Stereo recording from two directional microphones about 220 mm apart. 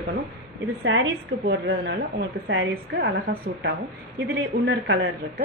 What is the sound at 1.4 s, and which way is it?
A woman's voice, 50° right (ahead or behind).